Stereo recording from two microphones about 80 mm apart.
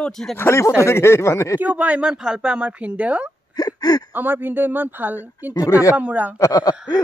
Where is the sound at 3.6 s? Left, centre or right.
Left.